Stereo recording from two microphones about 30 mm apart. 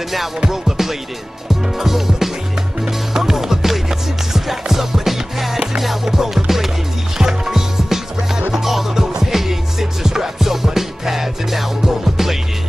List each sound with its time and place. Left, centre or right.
0.5 s music: centre
1.5 s speech: centre
3.1 s music: centre
7.2 s music: centre